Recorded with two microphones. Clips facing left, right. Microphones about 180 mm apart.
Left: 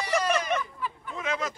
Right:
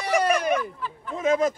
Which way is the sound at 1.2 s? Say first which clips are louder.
Right 10 dB; 50° right (ahead or behind).